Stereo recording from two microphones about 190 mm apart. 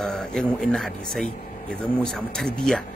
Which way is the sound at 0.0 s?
5° left (ahead or behind).